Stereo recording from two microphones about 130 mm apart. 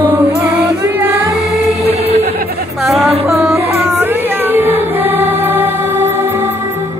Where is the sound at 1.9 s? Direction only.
55° right (ahead or behind).